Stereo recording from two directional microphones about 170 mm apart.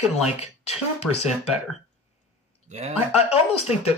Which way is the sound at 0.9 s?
35° left (ahead or behind).